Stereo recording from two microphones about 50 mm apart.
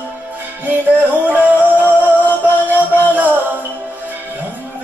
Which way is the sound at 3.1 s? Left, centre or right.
Right.